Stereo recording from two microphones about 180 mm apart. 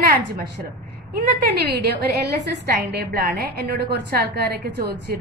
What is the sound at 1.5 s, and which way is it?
A woman's voice, 60° right (ahead or behind).